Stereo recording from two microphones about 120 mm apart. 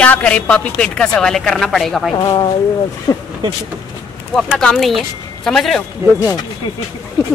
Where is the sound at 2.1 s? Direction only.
35° left (ahead or behind).